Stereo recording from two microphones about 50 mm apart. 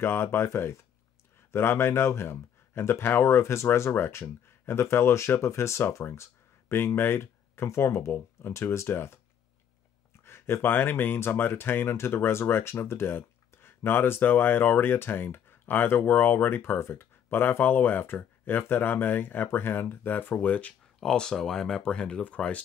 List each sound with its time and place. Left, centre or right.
0.0 s speech: left
5.4 s speech: left
6.7 s speech: left
21.0 s speech: centre